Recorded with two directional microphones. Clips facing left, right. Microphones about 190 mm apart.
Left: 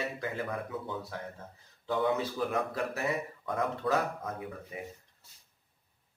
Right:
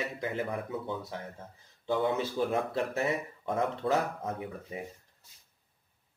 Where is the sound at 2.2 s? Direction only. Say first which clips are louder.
Right 2 dB; 25° right (ahead or behind).